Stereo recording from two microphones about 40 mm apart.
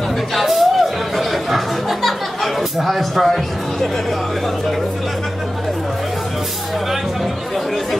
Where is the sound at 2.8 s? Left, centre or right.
Centre.